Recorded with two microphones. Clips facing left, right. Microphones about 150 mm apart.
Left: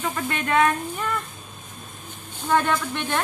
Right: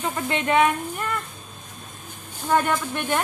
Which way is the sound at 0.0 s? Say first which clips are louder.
Right 2 dB; 25° right (ahead or behind).